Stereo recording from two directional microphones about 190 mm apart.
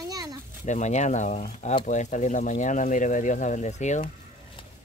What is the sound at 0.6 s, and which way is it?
Speech, 40° left (ahead or behind).